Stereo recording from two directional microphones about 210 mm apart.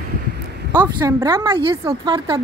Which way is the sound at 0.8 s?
15° right (ahead or behind).